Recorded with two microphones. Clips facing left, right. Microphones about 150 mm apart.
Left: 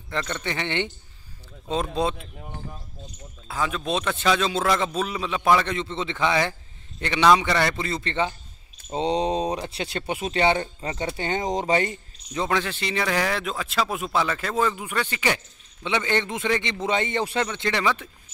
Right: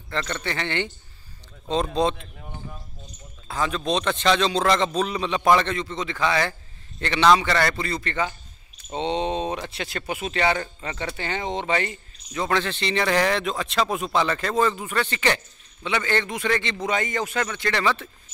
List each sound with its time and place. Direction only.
0.1 s speech: 15° left (ahead or behind)
3.4 s speech: 5° left (ahead or behind)
5.8 s a man's voice: 25° left (ahead or behind)
8.9 s speech: 35° left (ahead or behind)
12.4 s a man's voice: 10° left (ahead or behind)